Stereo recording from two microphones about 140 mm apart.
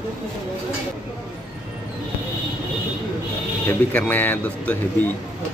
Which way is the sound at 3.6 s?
15° left (ahead or behind).